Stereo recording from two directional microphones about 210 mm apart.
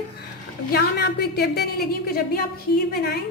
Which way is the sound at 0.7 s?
50° left (ahead or behind).